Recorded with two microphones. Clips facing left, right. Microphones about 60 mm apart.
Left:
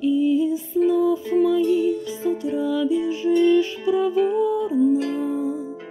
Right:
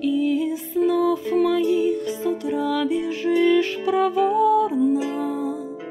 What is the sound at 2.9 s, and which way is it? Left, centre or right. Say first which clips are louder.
Music: left 1 dB; right.